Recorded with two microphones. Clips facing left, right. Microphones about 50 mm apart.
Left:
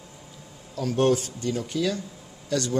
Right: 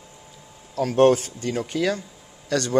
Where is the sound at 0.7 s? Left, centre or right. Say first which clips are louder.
Right 5 dB; right.